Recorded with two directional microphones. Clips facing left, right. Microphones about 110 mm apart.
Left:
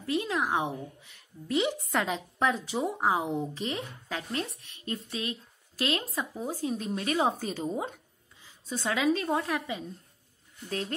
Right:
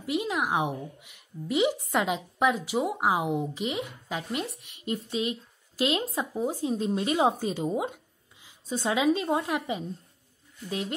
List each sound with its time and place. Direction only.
0.0 s a woman's voice: 15° right (ahead or behind)